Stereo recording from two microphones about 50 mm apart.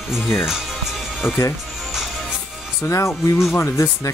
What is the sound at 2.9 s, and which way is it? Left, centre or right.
Speech, left.